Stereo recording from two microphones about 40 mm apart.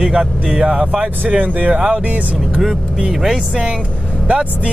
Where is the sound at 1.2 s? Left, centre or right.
Right.